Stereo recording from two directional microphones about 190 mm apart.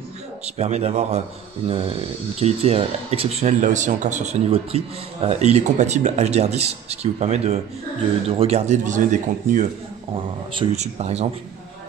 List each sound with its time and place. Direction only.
0.6 s speech: 35° right (ahead or behind)
10.1 s speech: 25° right (ahead or behind)